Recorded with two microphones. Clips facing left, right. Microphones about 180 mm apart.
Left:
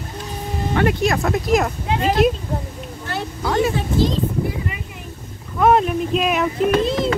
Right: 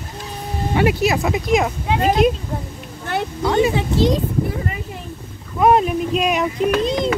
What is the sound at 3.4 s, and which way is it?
Speech, centre (ahead or behind).